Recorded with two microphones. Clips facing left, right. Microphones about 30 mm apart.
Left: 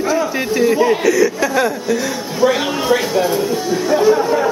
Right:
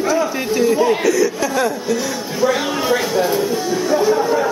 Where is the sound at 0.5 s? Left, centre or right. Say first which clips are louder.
Left 1 dB; centre.